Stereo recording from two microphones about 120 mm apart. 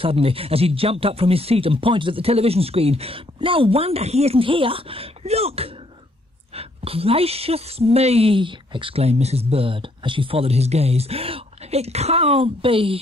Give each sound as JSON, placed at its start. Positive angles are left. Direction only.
{"t": 0.0, "sound": "a woman's voice", "side_deg": -50}